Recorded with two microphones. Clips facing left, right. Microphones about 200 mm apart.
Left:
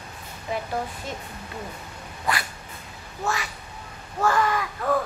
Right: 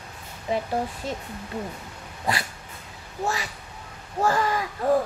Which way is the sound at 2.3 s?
30° right (ahead or behind).